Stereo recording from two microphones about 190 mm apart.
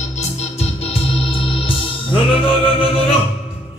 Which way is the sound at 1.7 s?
30° left (ahead or behind).